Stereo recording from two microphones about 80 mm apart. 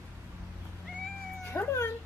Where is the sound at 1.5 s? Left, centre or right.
Left.